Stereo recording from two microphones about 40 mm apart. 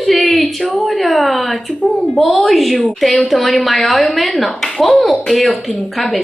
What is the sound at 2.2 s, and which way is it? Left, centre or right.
A woman's voice, centre.